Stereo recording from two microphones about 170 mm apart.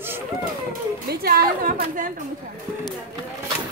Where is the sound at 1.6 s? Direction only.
50° right (ahead or behind).